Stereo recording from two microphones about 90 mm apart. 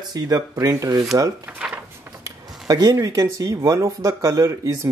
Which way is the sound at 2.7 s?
45° right (ahead or behind).